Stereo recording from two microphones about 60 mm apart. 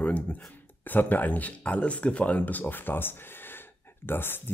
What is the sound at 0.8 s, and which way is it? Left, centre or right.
Speech, left.